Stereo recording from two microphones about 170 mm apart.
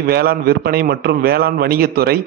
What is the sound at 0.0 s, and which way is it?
A man's voice, 65° right (ahead or behind).